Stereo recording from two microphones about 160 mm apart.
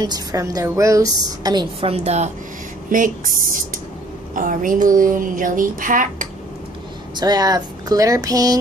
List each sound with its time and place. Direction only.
0.0 s a woman's voice: 25° right (ahead or behind); by 2.3 s 45° right (ahead or behind)
2.9 s speech: 55° right (ahead or behind)
4.4 s speech: 55° right (ahead or behind)
7.2 s a woman's voice: 25° right (ahead or behind)